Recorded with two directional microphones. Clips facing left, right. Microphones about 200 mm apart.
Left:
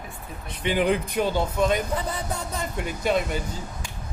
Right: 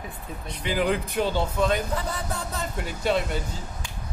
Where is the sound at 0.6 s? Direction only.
20° left (ahead or behind).